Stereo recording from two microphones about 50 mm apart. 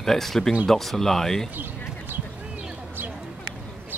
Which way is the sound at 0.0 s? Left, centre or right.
Centre.